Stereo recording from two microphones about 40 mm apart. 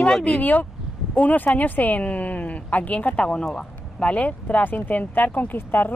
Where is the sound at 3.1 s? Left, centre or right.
Left.